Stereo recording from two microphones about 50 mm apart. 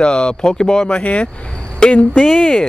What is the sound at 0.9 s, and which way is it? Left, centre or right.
Speech, left.